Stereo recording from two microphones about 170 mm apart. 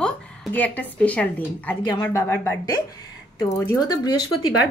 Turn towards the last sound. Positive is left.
turn(degrees=25)  # may be behind; listen again after turning